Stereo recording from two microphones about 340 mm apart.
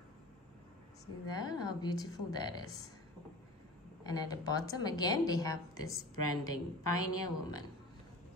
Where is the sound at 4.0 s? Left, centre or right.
Centre.